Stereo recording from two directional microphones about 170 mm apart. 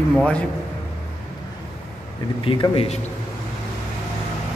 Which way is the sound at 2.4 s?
30° left (ahead or behind).